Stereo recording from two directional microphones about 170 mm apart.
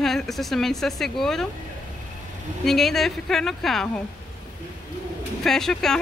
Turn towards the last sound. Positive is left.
turn(degrees=5)  # may be behind; listen again after turning